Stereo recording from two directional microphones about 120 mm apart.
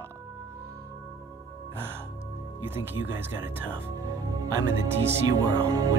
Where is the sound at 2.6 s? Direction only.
20° right (ahead or behind).